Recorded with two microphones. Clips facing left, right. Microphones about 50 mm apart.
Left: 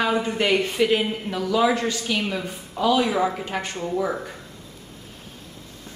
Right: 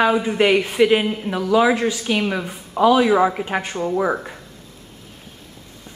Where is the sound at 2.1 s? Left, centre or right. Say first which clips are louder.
Right 4 dB; right.